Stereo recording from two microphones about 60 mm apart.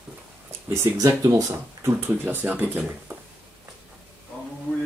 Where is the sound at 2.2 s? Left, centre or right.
Right.